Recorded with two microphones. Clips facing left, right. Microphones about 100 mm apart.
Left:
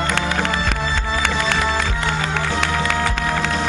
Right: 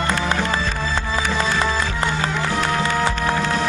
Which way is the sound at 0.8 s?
15° left (ahead or behind).